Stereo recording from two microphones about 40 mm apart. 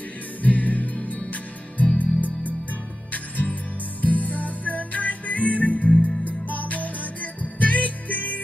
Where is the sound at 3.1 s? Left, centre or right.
Left.